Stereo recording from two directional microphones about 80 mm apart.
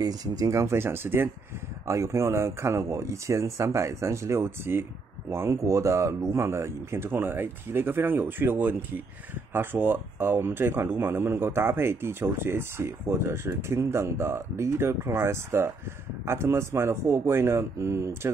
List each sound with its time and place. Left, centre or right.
0.0 s speech: right